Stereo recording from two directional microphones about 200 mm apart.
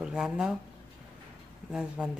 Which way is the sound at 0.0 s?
5° right (ahead or behind).